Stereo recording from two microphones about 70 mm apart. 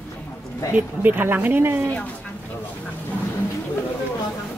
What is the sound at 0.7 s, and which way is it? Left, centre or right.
Speech, right.